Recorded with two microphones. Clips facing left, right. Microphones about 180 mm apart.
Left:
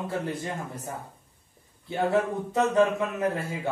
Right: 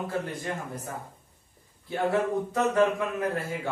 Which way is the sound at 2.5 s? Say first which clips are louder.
Left 3 dB; 20° left (ahead or behind).